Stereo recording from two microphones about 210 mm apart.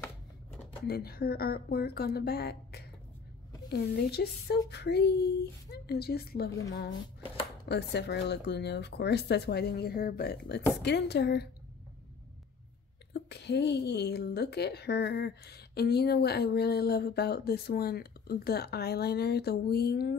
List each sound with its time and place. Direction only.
0.8 s speech: 50° left (ahead or behind)
7.6 s speech: 55° left (ahead or behind)
13.1 s speech: 55° left (ahead or behind)